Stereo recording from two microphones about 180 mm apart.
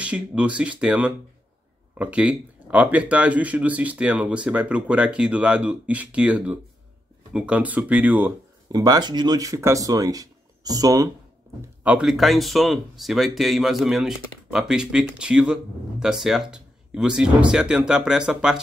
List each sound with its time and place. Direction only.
0.0 s speech: 5° right (ahead or behind)
8.7 s speech: 20° right (ahead or behind)
11.8 s speech: 5° right (ahead or behind)